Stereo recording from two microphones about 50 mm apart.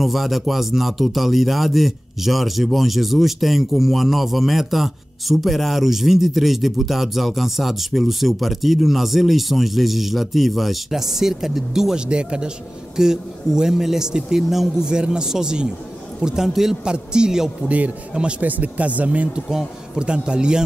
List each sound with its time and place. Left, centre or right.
0.0 s speech: centre
12.1 s a man's voice: centre
16.8 s a man's voice: centre
17.6 s a man's voice: right